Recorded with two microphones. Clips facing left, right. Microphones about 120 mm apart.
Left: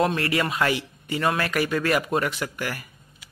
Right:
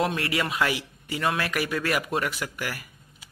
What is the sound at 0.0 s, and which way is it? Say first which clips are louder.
Speech: left 3 dB; 5° right (ahead or behind).